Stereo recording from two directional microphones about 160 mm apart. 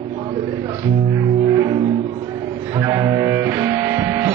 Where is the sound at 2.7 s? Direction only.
20° right (ahead or behind).